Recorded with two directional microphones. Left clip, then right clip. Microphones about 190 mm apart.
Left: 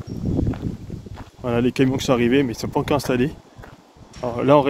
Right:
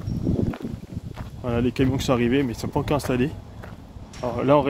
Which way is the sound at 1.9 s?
25° left (ahead or behind).